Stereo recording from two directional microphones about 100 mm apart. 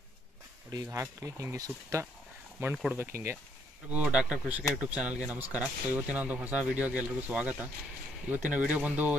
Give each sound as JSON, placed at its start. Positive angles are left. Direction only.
{"t": 0.7, "sound": "speech", "side_deg": -30}
{"t": 3.9, "sound": "speech", "side_deg": -10}